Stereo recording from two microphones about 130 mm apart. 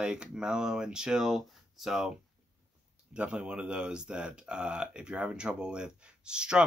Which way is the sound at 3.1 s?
10° right (ahead or behind).